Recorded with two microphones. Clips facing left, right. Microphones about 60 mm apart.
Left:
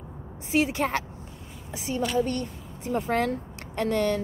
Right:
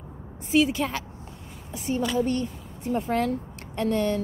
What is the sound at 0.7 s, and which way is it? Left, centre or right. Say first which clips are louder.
Speech: left 1 dB; left.